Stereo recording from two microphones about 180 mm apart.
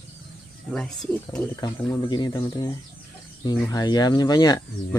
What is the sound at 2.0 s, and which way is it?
Speech, 25° left (ahead or behind).